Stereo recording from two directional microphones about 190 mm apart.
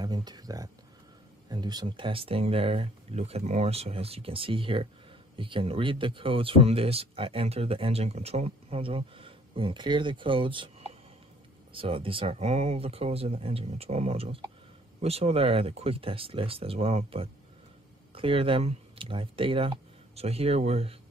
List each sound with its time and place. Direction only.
0.0 s speech: 20° right (ahead or behind)